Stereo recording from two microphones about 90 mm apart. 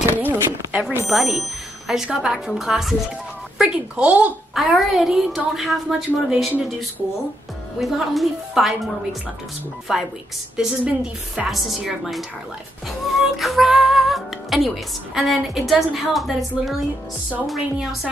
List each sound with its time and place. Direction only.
0.3 s speech: 15° right (ahead or behind)
0.8 s a woman's voice: centre (ahead or behind)
4.6 s a woman's voice: centre (ahead or behind)
7.8 s a woman's voice: centre (ahead or behind)